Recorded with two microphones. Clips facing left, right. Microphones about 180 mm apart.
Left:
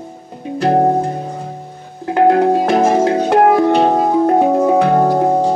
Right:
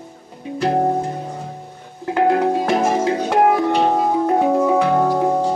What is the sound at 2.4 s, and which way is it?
Music, 50° left (ahead or behind).